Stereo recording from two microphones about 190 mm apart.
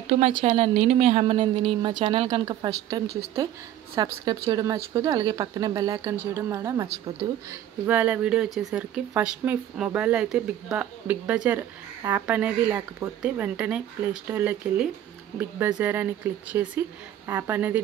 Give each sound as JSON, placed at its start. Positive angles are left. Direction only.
{"t": 0.2, "sound": "speech", "side_deg": -30}
{"t": 7.8, "sound": "speech", "side_deg": -5}